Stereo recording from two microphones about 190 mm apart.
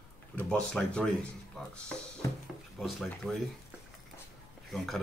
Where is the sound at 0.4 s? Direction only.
5° left (ahead or behind).